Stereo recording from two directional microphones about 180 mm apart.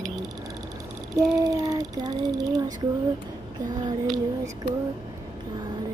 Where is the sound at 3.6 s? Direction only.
25° right (ahead or behind).